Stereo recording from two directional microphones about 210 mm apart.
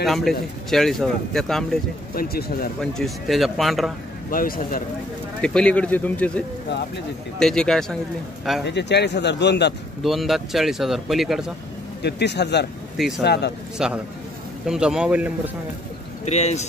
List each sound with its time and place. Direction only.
0.0 s speech: centre (ahead or behind)
2.1 s speech: 45° left (ahead or behind)
2.8 s speech: centre (ahead or behind)
4.3 s speech: 40° left (ahead or behind)
5.4 s speech: 5° left (ahead or behind)
8.6 s speech: 55° left (ahead or behind)
10.0 s speech: centre (ahead or behind)
12.0 s speech: 55° left (ahead or behind)
13.8 s speech: 5° right (ahead or behind)
16.3 s speech: 30° left (ahead or behind)